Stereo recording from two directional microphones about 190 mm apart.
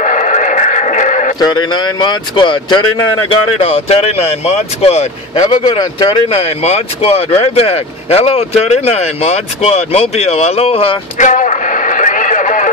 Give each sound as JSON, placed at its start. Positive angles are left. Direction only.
{"t": 0.0, "sound": "music", "side_deg": 40}
{"t": 1.4, "sound": "speech", "side_deg": 25}
{"t": 5.5, "sound": "speech", "side_deg": 25}